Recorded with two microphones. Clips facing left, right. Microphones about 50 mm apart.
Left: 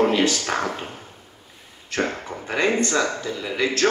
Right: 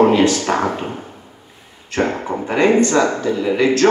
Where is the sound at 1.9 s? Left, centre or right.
Right.